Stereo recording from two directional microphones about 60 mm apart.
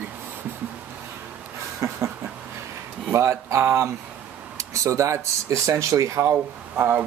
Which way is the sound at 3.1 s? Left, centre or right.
Right.